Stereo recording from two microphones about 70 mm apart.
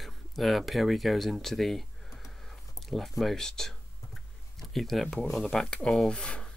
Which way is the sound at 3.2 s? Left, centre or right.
Centre.